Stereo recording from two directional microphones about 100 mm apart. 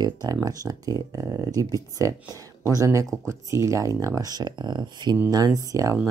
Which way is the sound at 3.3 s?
30° right (ahead or behind).